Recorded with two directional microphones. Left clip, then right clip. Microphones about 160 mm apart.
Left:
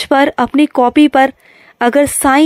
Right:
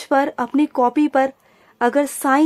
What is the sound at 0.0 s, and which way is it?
A woman's voice, 25° left (ahead or behind).